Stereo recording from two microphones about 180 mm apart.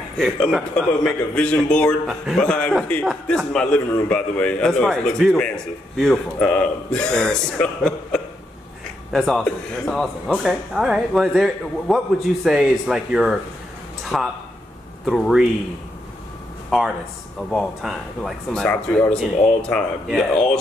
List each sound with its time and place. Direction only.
0.2 s speech: centre (ahead or behind)
16.7 s speech: 5° right (ahead or behind)